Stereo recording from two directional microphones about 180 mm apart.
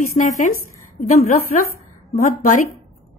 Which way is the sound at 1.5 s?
45° left (ahead or behind).